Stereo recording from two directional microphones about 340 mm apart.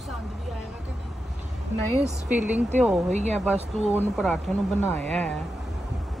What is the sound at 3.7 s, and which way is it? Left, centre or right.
Speech, centre.